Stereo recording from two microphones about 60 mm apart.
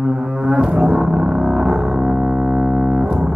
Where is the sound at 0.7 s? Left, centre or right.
Right.